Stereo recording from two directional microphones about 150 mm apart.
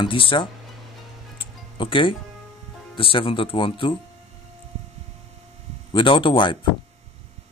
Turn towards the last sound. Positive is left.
turn(degrees=30)  # may be behind; listen again after turning